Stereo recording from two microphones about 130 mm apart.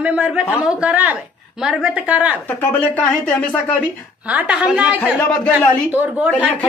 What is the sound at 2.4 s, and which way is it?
Speech, 15° left (ahead or behind).